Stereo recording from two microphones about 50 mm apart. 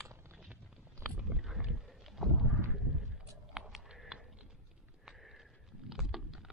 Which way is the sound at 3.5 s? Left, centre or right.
Centre.